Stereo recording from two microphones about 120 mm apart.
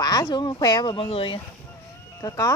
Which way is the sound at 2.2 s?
30° left (ahead or behind).